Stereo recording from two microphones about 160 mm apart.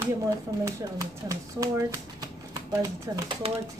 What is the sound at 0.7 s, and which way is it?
Speech, 20° right (ahead or behind).